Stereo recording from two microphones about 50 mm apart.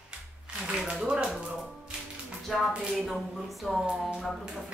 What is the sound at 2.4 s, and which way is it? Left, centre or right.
Speech, centre.